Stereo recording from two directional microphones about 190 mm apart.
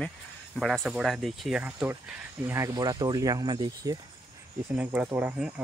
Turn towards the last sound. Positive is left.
turn(degrees=-5)  # may be behind; listen again after turning